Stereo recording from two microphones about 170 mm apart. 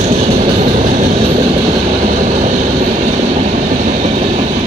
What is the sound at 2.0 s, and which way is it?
Vehicle, 50° right (ahead or behind).